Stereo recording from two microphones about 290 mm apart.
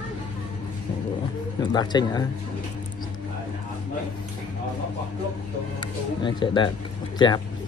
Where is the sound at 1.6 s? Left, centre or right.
Centre.